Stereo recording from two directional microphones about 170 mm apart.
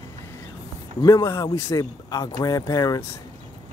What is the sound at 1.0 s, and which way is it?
Speech, 20° left (ahead or behind).